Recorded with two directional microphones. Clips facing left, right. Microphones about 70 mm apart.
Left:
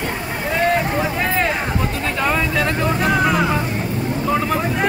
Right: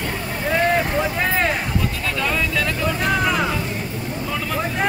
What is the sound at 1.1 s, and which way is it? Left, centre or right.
Vehicle, centre.